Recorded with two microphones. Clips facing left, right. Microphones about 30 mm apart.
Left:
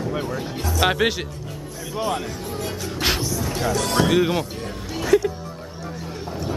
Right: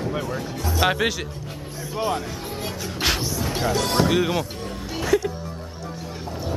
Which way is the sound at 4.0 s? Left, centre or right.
Centre.